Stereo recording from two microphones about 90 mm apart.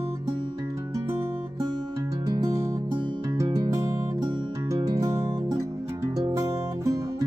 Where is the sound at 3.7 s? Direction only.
40° right (ahead or behind).